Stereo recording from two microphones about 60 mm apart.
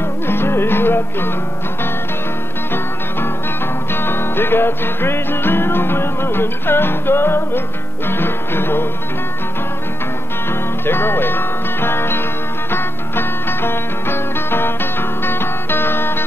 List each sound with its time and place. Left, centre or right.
0.3 s music: left
3.9 s music: left
10.9 s music: left